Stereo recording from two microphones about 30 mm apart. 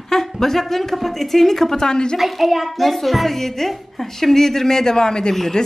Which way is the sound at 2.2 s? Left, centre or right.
Centre.